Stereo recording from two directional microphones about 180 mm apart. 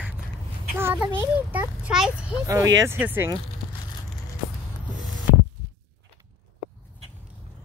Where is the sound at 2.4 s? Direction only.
20° right (ahead or behind).